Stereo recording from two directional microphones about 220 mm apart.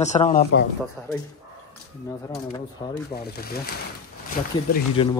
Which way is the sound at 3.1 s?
45° left (ahead or behind).